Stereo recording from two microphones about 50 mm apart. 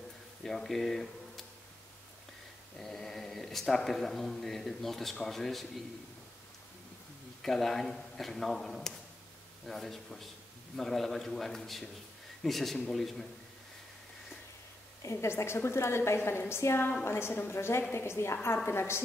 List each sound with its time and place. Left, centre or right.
0.4 s speech: centre
2.8 s a man's voice: centre
7.4 s a man's voice: centre
15.0 s a woman's voice: left